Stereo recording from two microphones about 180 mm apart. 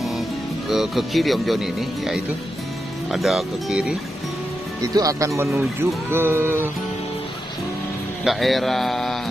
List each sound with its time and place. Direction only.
0.7 s speech: centre (ahead or behind)
4.9 s speech: 20° right (ahead or behind)
8.2 s speech: centre (ahead or behind)